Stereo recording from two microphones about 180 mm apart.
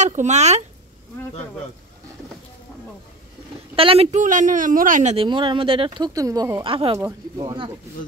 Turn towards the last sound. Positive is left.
turn(degrees=-15)  # may be behind; listen again after turning